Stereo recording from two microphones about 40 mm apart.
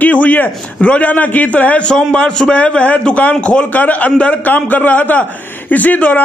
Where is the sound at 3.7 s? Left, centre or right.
Left.